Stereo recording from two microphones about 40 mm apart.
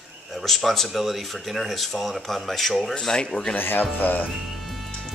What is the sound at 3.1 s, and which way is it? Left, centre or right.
Speech, centre.